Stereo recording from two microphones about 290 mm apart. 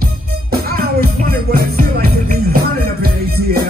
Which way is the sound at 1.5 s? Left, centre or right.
Right.